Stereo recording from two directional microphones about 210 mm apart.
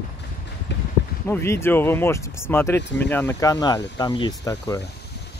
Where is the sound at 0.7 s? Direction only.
55° left (ahead or behind).